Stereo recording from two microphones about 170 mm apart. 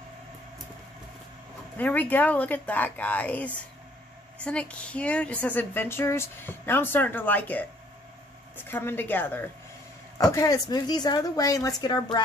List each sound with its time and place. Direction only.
1.8 s a woman's voice: 10° left (ahead or behind)